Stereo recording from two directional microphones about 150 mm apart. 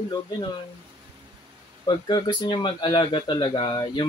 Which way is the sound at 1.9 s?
30° left (ahead or behind).